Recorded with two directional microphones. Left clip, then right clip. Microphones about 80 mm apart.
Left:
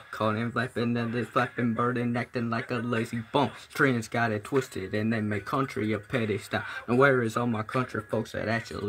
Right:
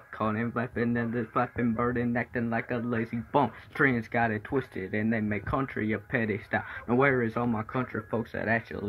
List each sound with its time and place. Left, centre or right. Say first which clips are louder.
0.2 s speech: left 2 dB; left